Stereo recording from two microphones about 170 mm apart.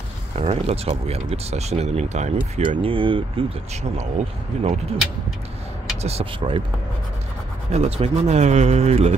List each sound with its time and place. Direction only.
0.4 s speech: 35° right (ahead or behind)
4.5 s speech: 40° right (ahead or behind)
7.7 s speech: 40° right (ahead or behind)